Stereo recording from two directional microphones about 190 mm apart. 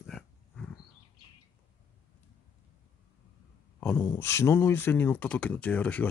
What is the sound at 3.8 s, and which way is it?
Speech, 10° left (ahead or behind).